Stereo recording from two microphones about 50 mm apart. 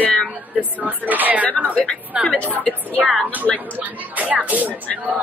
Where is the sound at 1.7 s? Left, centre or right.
Centre.